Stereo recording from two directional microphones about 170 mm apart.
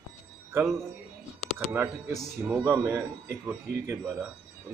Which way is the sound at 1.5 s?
10° right (ahead or behind).